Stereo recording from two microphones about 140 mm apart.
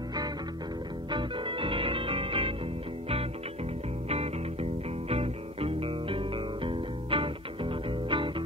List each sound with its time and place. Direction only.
1.1 s music: 35° right (ahead or behind)
5.1 s music: 45° right (ahead or behind)